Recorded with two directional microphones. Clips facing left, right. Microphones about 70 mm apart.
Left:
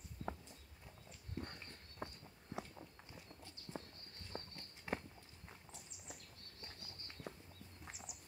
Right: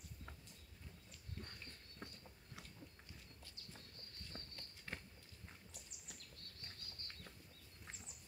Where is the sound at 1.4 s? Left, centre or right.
Left.